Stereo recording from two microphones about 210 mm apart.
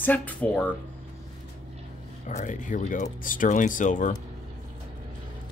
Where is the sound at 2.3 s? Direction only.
35° left (ahead or behind).